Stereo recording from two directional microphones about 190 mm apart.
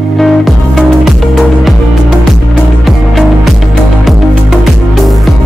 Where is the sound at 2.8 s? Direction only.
Centre (ahead or behind).